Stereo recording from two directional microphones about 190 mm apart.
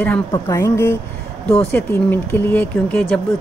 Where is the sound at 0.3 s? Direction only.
15° left (ahead or behind).